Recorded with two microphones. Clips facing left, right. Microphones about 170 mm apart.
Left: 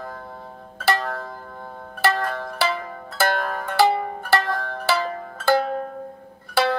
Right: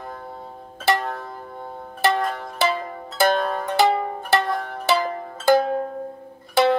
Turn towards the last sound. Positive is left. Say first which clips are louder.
# right 4 dB
turn(degrees=-20)  # may be behind; listen again after turning